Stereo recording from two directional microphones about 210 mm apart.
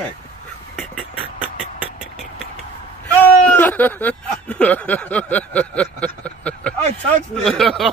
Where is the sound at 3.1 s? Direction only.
10° left (ahead or behind).